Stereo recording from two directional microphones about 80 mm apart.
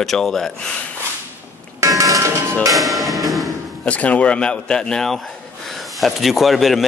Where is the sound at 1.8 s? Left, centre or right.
Right.